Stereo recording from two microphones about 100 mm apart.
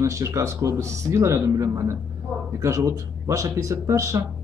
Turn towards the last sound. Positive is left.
turn(degrees=-30)  # may be behind; listen again after turning